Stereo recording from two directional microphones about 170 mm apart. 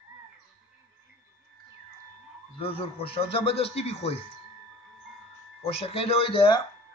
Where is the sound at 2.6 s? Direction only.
35° left (ahead or behind).